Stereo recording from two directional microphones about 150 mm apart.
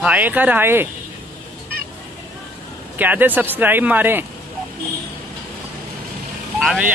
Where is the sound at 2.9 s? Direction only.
10° right (ahead or behind).